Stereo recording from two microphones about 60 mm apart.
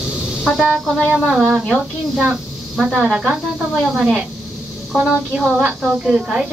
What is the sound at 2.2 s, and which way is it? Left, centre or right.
Speech, centre.